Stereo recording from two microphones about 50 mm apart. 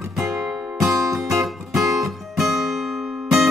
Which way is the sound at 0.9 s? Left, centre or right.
Right.